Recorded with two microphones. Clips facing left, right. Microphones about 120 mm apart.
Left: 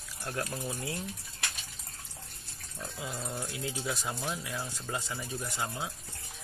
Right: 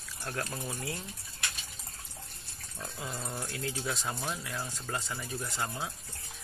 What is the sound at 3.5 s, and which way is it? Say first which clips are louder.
Speech: right 2 dB; 15° left (ahead or behind).